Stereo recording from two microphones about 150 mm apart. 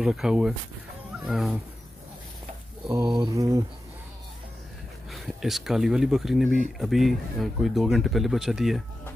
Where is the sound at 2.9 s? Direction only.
25° right (ahead or behind).